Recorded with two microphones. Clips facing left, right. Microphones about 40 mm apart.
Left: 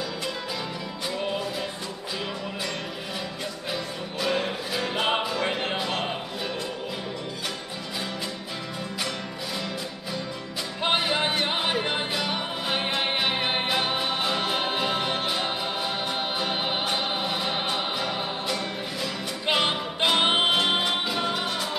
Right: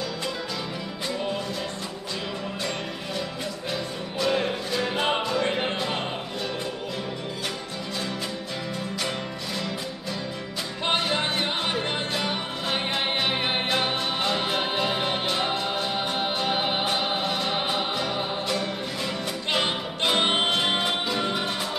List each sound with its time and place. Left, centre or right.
3.7 s music: centre
10.8 s music: centre